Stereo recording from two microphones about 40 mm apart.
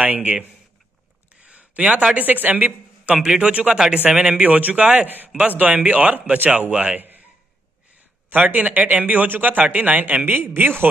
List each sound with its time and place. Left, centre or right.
0.0 s a man's voice: right
1.4 s a sound: right
2.1 s a man's voice: right
3.7 s speech: centre
4.4 s a man's voice: right
5.0 s a man's voice: right
6.7 s speech: right
7.0 s a sound: right
8.5 s speech: right